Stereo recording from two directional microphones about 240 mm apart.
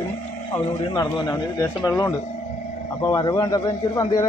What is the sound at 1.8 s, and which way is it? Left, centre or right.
A man's voice, centre.